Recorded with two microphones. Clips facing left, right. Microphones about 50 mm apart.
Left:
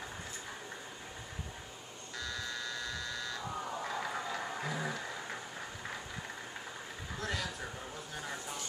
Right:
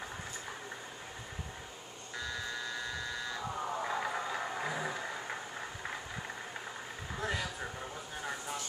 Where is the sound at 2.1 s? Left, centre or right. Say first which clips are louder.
Right 1 dB; centre.